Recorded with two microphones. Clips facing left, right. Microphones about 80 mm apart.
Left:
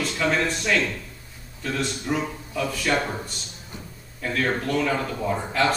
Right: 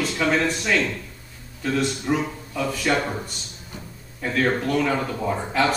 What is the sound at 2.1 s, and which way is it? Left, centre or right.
Speech, centre.